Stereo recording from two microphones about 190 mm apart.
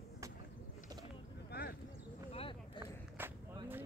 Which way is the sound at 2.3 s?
30° left (ahead or behind).